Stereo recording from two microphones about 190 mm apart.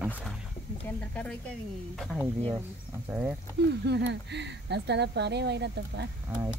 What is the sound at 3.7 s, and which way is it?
Speech, 65° right (ahead or behind).